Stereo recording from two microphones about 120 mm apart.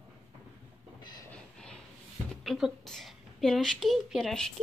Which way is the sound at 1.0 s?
35° left (ahead or behind).